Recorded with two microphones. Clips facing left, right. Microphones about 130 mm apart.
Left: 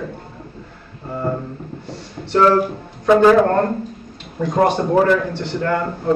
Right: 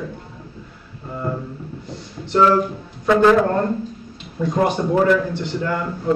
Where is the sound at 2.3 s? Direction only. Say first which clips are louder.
Left 2 dB; 50° left (ahead or behind).